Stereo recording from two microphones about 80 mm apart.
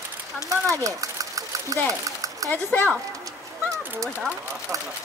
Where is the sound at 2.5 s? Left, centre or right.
Left.